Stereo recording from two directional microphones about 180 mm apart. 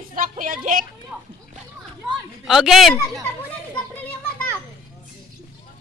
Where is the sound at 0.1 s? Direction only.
50° right (ahead or behind).